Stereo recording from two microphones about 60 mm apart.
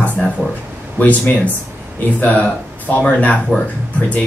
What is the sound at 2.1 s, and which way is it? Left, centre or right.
Speech, left.